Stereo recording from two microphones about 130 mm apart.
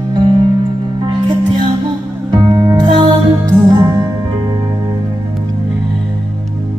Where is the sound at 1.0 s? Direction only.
35° right (ahead or behind).